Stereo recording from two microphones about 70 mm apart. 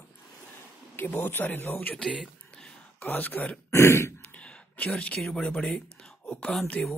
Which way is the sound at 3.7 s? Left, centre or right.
Left.